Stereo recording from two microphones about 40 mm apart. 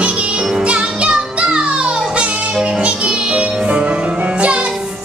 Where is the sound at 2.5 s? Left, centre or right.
Centre.